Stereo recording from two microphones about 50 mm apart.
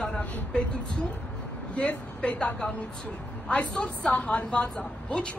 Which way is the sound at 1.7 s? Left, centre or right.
Left.